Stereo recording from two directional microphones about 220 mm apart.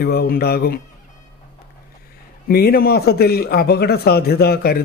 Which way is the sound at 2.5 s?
45° left (ahead or behind).